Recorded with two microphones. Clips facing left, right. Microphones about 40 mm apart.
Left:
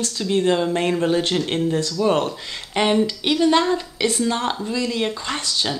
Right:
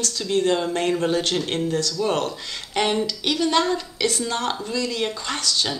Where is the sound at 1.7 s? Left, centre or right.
Left.